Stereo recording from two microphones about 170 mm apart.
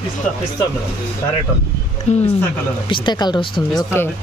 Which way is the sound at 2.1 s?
40° left (ahead or behind).